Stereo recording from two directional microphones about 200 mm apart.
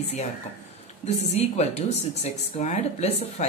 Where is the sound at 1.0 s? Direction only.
35° left (ahead or behind).